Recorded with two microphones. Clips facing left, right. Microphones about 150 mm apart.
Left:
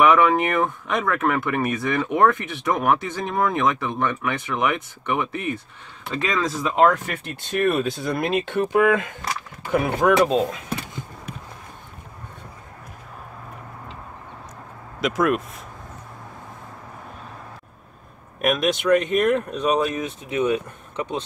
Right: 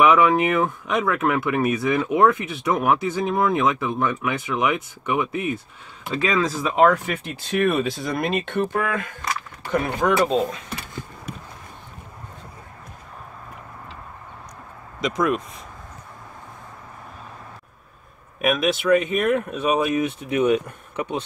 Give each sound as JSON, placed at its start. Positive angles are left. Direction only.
{"t": 0.0, "sound": "speech", "side_deg": -5}
{"t": 8.6, "sound": "speech", "side_deg": 15}
{"t": 9.7, "sound": "speech", "side_deg": 5}
{"t": 15.0, "sound": "speech", "side_deg": 5}
{"t": 18.4, "sound": "speech", "side_deg": 0}